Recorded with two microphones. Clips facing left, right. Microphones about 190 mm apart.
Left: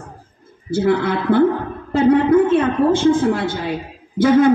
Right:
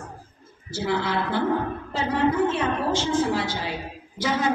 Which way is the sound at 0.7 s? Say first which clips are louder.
Left 9 dB; 55° left (ahead or behind).